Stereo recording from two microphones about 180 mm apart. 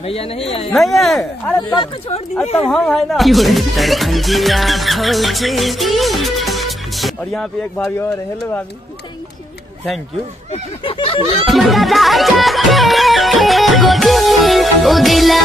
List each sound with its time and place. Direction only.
0.0 s a sound: 35° left (ahead or behind)
0.7 s speech: centre (ahead or behind)
1.6 s speech: 25° left (ahead or behind)
2.6 s speech: centre (ahead or behind)
10.5 s a sound: 30° left (ahead or behind)
11.4 s music: centre (ahead or behind)